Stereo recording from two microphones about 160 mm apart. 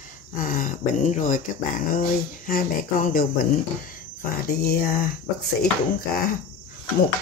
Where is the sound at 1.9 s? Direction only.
65° left (ahead or behind).